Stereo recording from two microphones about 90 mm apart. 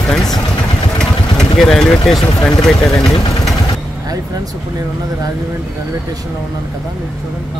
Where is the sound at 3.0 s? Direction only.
90° left.